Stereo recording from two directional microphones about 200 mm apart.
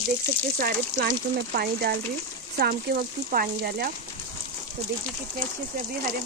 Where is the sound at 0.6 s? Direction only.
50° right (ahead or behind).